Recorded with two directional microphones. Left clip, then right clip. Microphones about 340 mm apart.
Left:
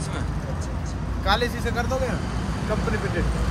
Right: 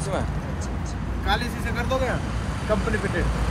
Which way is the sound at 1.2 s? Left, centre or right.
Centre.